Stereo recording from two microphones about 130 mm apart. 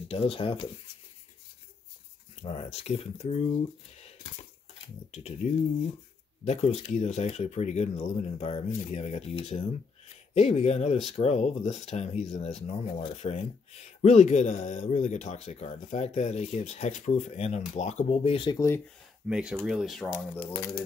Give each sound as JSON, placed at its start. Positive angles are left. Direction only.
{"t": 0.1, "sound": "speech", "side_deg": 45}
{"t": 2.4, "sound": "speech", "side_deg": 50}
{"t": 5.1, "sound": "speech", "side_deg": 60}
{"t": 18.5, "sound": "speech", "side_deg": 25}
{"t": 19.2, "sound": "speech", "side_deg": -5}
{"t": 20.4, "sound": "speech", "side_deg": 20}